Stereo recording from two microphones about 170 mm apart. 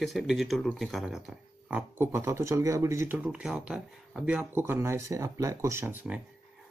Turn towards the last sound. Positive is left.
turn(degrees=-10)  # may be behind; listen again after turning